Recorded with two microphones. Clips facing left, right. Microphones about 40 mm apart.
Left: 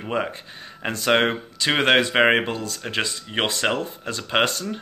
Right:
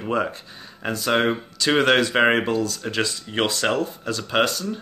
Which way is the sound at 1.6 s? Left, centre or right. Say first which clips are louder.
Even; left.